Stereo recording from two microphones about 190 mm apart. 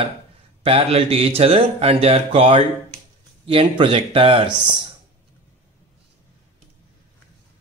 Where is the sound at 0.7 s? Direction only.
30° right (ahead or behind).